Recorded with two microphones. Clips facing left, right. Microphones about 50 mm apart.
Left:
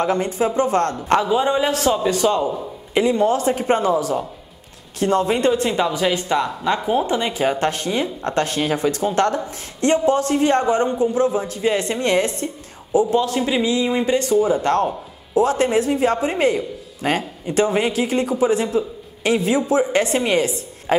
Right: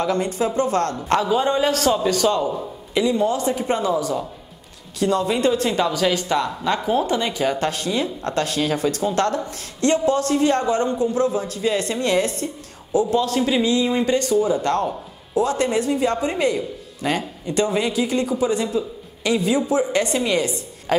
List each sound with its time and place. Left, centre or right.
0.0 s speech: left
1.3 s a man's voice: centre
2.9 s a man's voice: left
5.5 s speech: left
13.4 s a man's voice: centre; by 17.2 s left
17.5 s speech: left
17.7 s a man's voice: left